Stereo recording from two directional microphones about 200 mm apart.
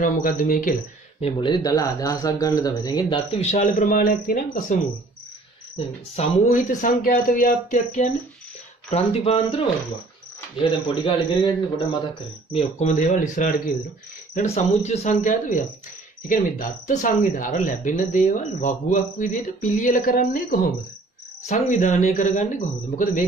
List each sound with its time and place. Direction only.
0.0 s speech: 40° left (ahead or behind)
1.2 s speech: 25° left (ahead or behind); by 4.7 s 40° left (ahead or behind)
6.1 s speech: 35° left (ahead or behind)
8.9 s speech: 25° left (ahead or behind)
12.5 s speech: 35° left (ahead or behind)